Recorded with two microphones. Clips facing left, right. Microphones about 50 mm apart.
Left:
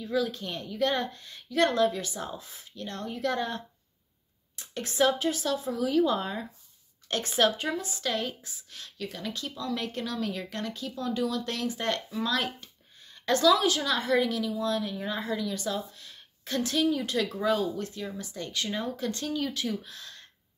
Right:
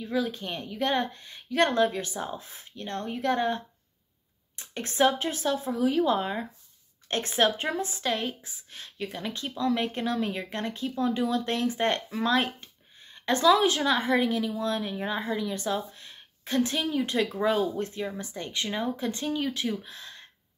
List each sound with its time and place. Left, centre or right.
0.0 s speech: right
1.5 s speech: right
7.1 s speech: right
8.0 s speech: centre